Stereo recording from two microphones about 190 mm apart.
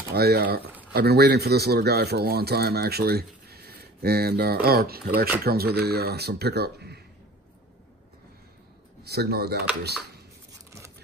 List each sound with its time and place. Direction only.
0.1 s speech: 55° right (ahead or behind)
9.0 s speech: 60° right (ahead or behind)